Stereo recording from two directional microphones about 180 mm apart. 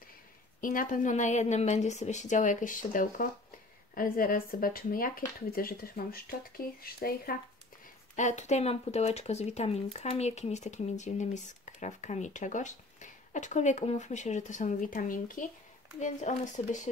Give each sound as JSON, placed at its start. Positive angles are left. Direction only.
{"t": 0.6, "sound": "a woman's voice", "side_deg": 50}
{"t": 8.2, "sound": "a woman's voice", "side_deg": 40}